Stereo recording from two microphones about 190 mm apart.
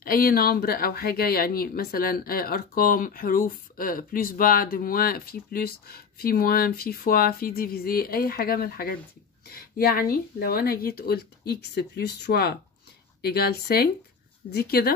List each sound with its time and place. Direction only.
0.0 s speech: 50° left (ahead or behind)